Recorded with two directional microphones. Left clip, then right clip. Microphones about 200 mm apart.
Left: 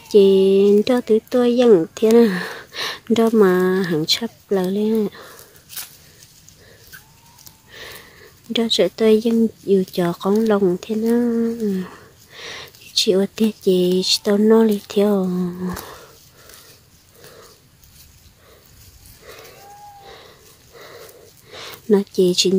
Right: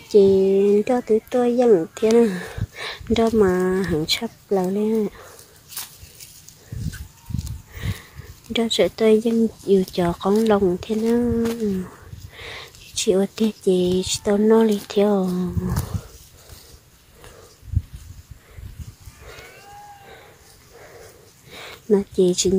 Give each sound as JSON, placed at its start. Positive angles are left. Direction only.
{"t": 0.1, "sound": "speech", "side_deg": 10}
{"t": 7.7, "sound": "sniff", "side_deg": 10}
{"t": 8.5, "sound": "speech", "side_deg": 10}
{"t": 21.5, "sound": "speech", "side_deg": 15}